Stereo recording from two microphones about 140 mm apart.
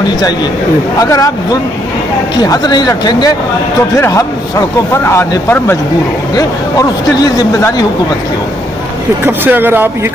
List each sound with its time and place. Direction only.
0.9 s a man's voice: 25° left (ahead or behind)
9.2 s speech: 15° right (ahead or behind)